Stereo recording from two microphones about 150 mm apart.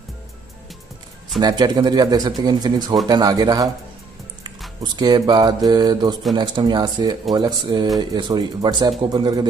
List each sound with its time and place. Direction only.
1.4 s speech: 30° right (ahead or behind)
4.9 s speech: 25° right (ahead or behind)